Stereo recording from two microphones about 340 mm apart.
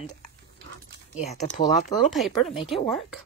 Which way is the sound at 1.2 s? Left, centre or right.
Centre.